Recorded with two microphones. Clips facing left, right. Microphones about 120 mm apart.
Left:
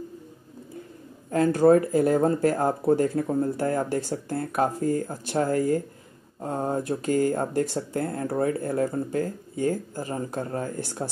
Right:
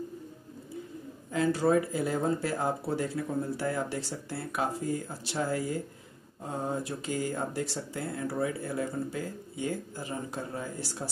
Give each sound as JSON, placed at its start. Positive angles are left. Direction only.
{"t": 1.3, "sound": "speech", "side_deg": 50}